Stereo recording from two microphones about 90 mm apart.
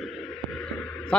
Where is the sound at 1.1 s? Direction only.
10° left (ahead or behind).